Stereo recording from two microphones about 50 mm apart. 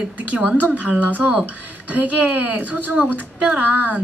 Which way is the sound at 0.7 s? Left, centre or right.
Right.